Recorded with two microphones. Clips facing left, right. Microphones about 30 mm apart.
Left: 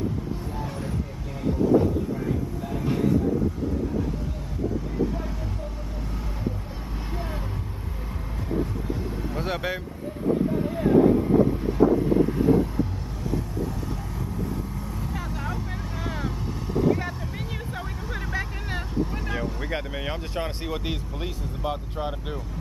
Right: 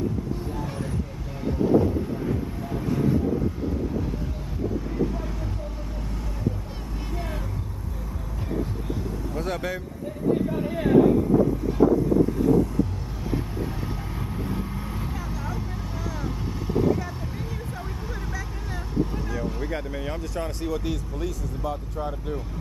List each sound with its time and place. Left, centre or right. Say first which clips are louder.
9.3 s vehicle: even; left
14.3 s vehicle: even; right
15.3 s vehicle: left 1 dB; centre
19.6 s speech: even; left